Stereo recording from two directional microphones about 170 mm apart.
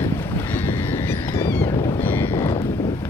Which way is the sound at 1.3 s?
15° left (ahead or behind).